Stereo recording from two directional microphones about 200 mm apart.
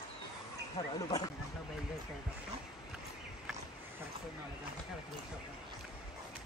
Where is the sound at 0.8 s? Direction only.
30° left (ahead or behind).